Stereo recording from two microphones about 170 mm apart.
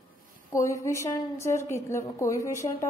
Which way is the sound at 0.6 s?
15° left (ahead or behind).